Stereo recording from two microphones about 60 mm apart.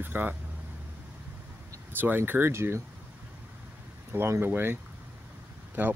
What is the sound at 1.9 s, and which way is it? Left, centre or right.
Speech, right.